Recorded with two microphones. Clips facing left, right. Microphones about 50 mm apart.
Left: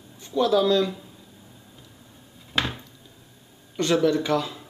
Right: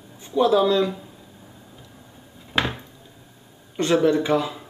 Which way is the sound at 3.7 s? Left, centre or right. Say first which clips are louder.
Right 2 dB; right.